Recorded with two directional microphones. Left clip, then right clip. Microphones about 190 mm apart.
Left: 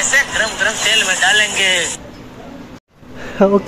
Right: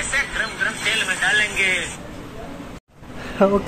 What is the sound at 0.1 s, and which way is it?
Speech, 35° left (ahead or behind).